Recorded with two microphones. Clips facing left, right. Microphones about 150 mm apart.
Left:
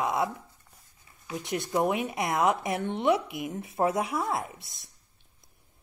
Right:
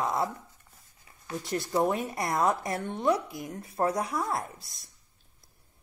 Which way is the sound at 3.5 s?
Centre (ahead or behind).